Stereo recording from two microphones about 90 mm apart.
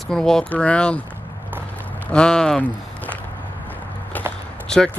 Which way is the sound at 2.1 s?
10° left (ahead or behind).